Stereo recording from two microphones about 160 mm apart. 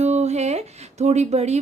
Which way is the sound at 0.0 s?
45° right (ahead or behind).